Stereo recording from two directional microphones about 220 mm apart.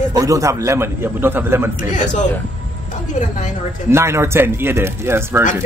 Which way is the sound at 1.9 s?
35° left (ahead or behind).